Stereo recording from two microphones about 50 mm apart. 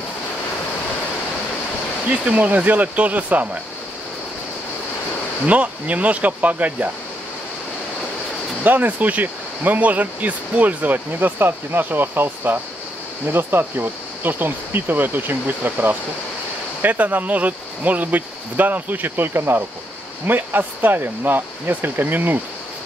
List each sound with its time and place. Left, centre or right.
2.0 s speech: right
5.5 s speech: right
8.6 s speech: right